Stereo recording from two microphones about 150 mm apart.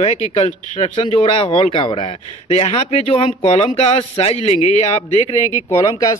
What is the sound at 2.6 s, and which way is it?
Speech, 45° left (ahead or behind).